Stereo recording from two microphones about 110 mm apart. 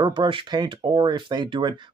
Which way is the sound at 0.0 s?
45° right (ahead or behind).